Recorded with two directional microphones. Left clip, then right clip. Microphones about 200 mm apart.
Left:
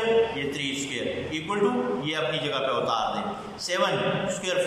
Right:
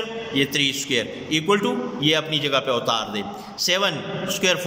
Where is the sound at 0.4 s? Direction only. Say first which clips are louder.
Right 8 dB; 50° right (ahead or behind).